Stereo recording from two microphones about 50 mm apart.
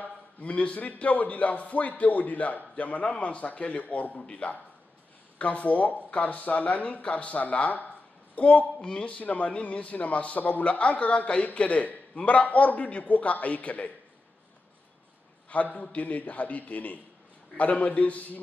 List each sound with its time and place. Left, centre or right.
0.0 s a man's voice: left
15.5 s a man's voice: left